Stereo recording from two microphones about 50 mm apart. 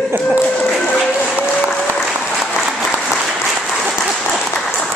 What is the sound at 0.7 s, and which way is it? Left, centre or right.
Music, centre.